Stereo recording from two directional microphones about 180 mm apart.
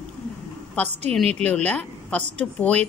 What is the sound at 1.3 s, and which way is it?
A woman's voice, 5° left (ahead or behind).